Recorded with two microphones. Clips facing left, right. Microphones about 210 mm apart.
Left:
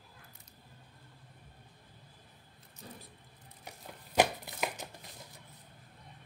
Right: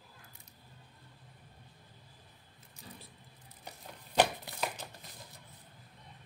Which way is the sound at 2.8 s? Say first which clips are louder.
Left 2 dB; 50° left (ahead or behind).